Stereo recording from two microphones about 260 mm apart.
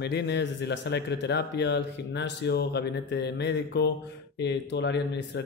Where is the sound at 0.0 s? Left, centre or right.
Left.